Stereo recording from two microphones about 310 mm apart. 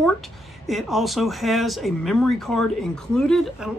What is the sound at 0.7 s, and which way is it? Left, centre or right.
Speech, centre.